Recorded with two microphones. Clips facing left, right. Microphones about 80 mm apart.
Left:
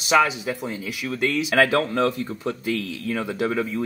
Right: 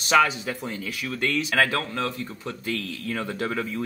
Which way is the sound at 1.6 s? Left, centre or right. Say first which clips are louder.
Left 5 dB; left.